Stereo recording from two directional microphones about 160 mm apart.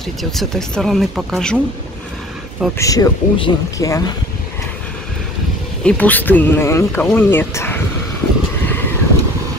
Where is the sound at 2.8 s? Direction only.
20° left (ahead or behind).